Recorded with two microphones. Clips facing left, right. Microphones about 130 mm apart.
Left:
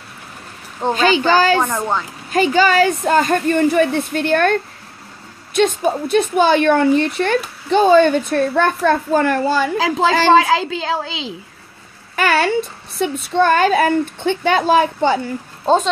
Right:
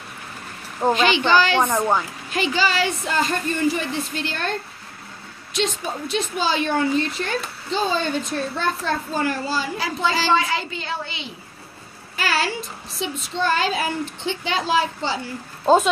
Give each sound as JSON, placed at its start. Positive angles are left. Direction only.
{"t": 0.9, "sound": "a woman's voice", "side_deg": 40}
{"t": 1.6, "sound": "speech", "side_deg": -10}
{"t": 2.3, "sound": "a woman's voice", "side_deg": 45}
{"t": 12.2, "sound": "a woman's voice", "side_deg": 60}
{"t": 15.6, "sound": "speech", "side_deg": -5}